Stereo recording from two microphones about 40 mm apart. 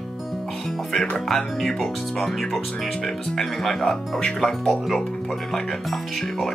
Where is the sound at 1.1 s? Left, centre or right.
Centre.